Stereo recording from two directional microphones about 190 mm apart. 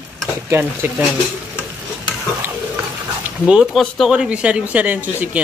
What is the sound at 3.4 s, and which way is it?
Speech, 5° right (ahead or behind).